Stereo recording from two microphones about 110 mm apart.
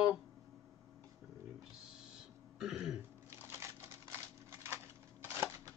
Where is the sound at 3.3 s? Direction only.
25° right (ahead or behind).